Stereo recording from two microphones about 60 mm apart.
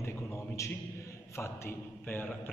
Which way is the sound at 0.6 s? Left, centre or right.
Left.